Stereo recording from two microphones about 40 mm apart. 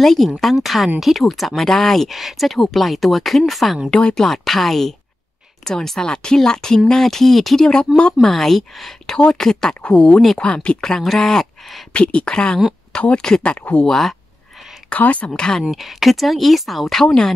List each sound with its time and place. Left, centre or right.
0.0 s speech: centre
3.9 s speech: centre
10.4 s speech: left
11.0 s speech: centre
11.9 s speech: left
13.4 s speech: left
13.8 s speech: centre
14.9 s a woman's voice: left
15.3 s speech: centre
15.7 s speech: centre
17.0 s speech: centre